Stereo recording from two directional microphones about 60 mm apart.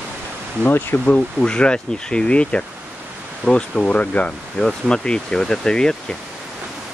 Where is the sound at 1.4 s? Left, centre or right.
Centre.